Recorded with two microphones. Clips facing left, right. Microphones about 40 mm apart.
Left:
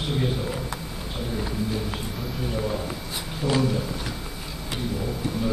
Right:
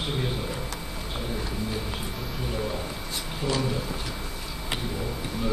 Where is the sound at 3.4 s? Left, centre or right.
Centre.